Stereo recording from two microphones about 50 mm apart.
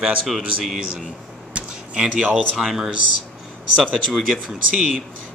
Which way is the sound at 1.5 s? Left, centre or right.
Right.